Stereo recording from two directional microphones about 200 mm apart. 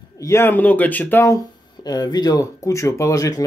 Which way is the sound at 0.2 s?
15° left (ahead or behind).